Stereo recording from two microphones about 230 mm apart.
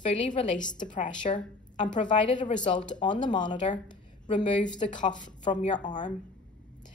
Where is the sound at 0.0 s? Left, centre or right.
Left.